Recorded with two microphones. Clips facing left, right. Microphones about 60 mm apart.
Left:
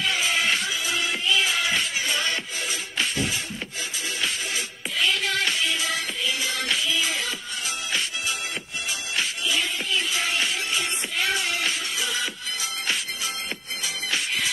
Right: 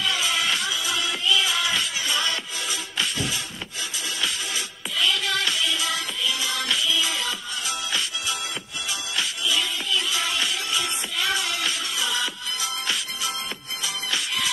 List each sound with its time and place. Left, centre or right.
0.0 s music: left
9.1 s music: left
14.1 s music: left